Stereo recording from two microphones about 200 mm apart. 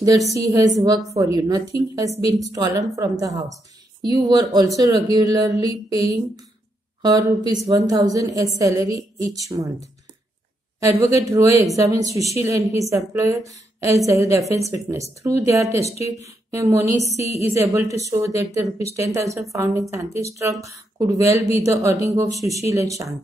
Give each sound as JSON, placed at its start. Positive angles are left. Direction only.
{"t": 0.3, "sound": "a woman's voice", "side_deg": -15}
{"t": 10.8, "sound": "a woman's voice", "side_deg": -15}